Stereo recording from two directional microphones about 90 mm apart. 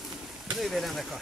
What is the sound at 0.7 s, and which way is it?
Speech, centre (ahead or behind).